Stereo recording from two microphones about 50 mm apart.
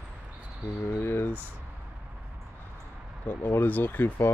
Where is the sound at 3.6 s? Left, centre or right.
Left.